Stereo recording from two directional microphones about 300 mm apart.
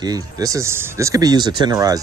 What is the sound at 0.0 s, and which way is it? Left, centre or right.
Speech, centre.